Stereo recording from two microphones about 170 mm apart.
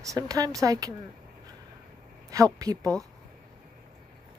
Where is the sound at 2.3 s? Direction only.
20° right (ahead or behind).